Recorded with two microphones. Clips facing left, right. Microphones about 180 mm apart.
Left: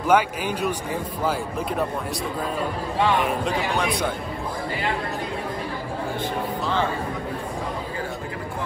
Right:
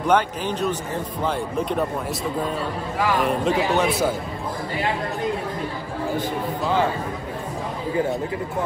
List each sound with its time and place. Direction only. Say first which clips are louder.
0.0 s speech: even; 10° left (ahead or behind)
3.2 s speech: right 3 dB; centre (ahead or behind)
6.1 s speech: right 2 dB; 10° right (ahead or behind)